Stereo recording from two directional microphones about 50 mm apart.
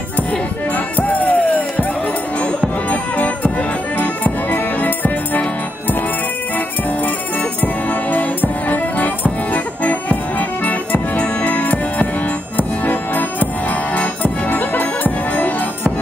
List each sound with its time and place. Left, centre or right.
0.7 s music: left
2.9 s music: left
7.6 s music: left